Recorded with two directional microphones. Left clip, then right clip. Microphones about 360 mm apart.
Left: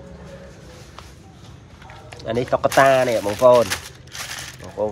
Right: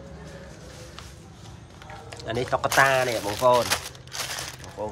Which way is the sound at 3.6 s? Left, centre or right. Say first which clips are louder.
Even; centre.